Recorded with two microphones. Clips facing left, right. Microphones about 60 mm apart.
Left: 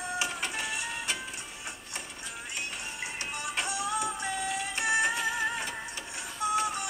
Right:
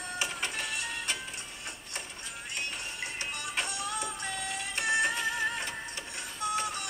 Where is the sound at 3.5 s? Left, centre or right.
Centre.